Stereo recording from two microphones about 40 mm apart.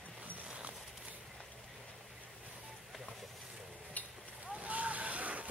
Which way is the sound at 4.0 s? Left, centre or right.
Left.